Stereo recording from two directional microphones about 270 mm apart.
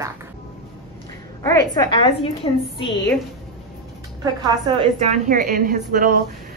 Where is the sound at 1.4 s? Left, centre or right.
Centre.